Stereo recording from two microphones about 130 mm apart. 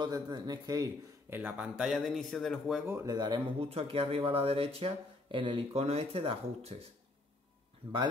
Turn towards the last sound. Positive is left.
turn(degrees=-45)  # may be behind; listen again after turning